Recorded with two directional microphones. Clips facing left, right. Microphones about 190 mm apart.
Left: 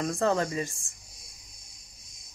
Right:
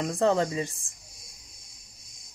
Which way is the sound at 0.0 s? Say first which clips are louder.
Right 2 dB; 20° right (ahead or behind).